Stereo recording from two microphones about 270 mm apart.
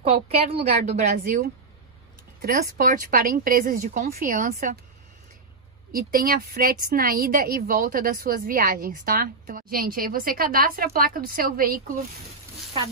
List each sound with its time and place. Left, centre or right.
0.0 s a woman's voice: right
2.8 s a woman's voice: right
5.9 s a woman's voice: right